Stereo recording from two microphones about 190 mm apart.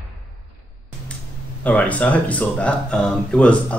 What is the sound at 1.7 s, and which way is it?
Speech, 10° left (ahead or behind).